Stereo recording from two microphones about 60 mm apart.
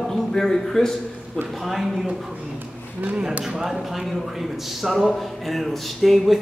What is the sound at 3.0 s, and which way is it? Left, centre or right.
Speech, right.